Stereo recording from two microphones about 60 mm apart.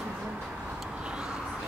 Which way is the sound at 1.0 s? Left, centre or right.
Centre.